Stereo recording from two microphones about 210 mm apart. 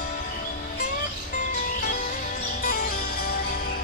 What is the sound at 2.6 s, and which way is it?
Music, 45° left (ahead or behind).